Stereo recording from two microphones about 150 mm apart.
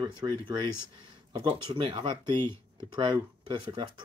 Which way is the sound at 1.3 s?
35° right (ahead or behind).